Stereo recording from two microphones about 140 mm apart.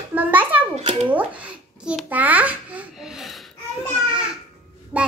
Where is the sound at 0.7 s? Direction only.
45° right (ahead or behind).